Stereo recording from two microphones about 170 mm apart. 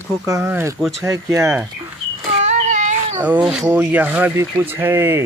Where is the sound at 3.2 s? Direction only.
5° right (ahead or behind).